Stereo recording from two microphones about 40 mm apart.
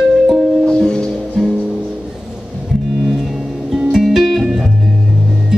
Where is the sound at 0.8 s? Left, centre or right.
Centre.